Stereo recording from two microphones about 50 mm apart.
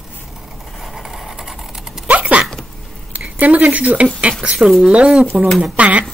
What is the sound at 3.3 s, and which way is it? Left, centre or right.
A woman's voice, right.